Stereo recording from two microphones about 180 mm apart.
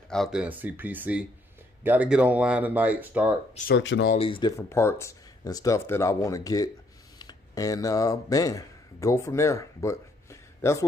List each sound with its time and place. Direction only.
0.1 s speech: centre (ahead or behind)
3.7 s speech: 80° left
4.2 s speech: 25° left (ahead or behind)